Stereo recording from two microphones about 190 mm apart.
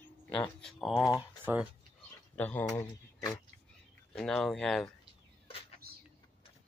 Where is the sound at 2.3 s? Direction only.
10° left (ahead or behind).